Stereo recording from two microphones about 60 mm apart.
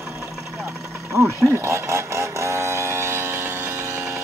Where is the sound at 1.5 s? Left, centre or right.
Right.